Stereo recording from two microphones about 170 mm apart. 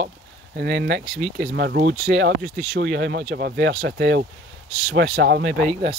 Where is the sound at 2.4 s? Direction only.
Centre (ahead or behind).